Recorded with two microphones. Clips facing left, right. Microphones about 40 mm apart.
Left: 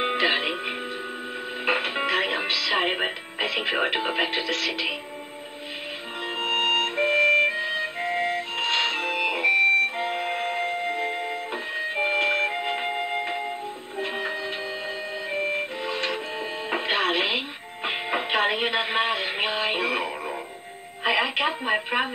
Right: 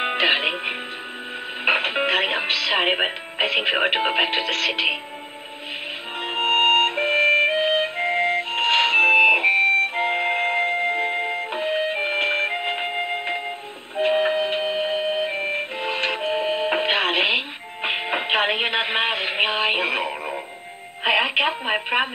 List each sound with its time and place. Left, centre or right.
0.0 s music: right
3.8 s speech: right
6.2 s music: right
13.9 s music: right
21.0 s a woman's voice: right